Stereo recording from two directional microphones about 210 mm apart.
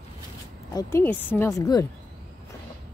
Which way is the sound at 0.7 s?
15° left (ahead or behind).